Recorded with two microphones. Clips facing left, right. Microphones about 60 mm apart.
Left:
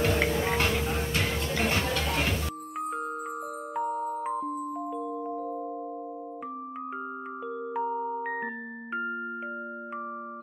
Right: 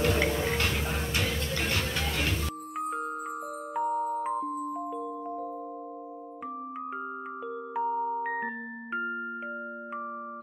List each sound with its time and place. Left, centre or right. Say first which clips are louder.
0.1 s music: left 1 dB; centre
0.4 s a sound: left 2 dB; left
0.7 s vehicle: left 2 dB; centre
1.6 s music: left 5 dB; left
2.3 s music: even; centre
7.7 s music: right 2 dB; centre